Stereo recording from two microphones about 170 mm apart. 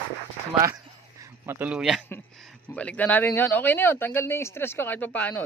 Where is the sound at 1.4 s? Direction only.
10° right (ahead or behind).